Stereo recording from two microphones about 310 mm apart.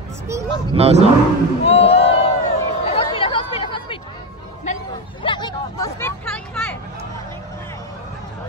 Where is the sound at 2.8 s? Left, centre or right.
Centre.